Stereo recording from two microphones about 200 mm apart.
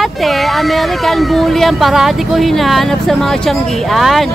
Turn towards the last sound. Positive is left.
turn(degrees=0)  # may be behind; listen again after turning